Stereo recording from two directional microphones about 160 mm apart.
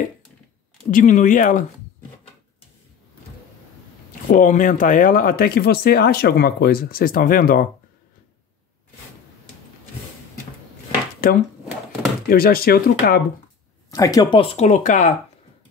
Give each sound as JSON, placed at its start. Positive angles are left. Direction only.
{"t": 0.8, "sound": "speech", "side_deg": 55}
{"t": 4.3, "sound": "speech", "side_deg": 55}
{"t": 11.2, "sound": "speech", "side_deg": 65}
{"t": 13.8, "sound": "speech", "side_deg": 20}
{"t": 14.4, "sound": "speech", "side_deg": 35}
{"t": 14.7, "sound": "speech", "side_deg": 50}